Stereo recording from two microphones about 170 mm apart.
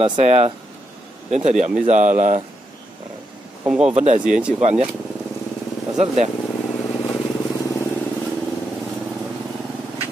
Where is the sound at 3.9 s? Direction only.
40° right (ahead or behind).